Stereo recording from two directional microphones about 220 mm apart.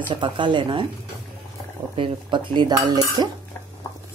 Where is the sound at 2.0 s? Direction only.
20° right (ahead or behind).